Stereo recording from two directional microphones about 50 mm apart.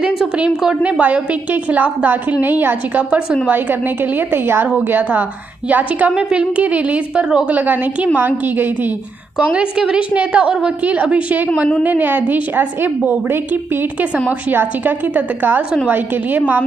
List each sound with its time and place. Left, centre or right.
0.8 s a woman's voice: right
4.3 s a woman's voice: right
5.7 s a woman's voice: right
9.5 s a woman's voice: centre; by 13.4 s right
14.5 s a woman's voice: right